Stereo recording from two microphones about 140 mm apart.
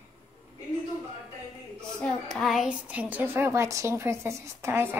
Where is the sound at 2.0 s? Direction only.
Centre (ahead or behind); by 4.9 s 20° right (ahead or behind).